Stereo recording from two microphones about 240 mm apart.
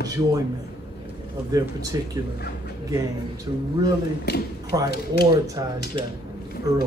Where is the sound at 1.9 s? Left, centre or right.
Centre.